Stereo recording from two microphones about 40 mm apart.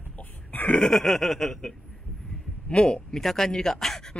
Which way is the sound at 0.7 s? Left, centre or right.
Left.